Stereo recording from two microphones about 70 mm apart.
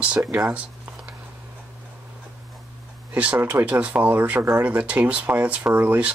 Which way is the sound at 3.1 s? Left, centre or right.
Centre.